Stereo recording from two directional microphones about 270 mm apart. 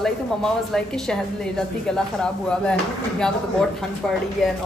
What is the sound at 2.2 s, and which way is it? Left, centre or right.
Speech, centre.